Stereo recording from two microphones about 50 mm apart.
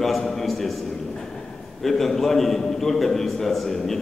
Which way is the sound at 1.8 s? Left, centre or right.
Centre.